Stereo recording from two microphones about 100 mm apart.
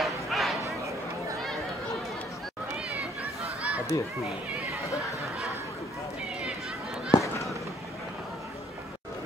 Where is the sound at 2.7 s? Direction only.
15° right (ahead or behind).